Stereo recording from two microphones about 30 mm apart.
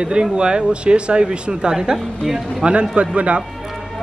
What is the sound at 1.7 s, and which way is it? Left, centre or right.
Speech, right.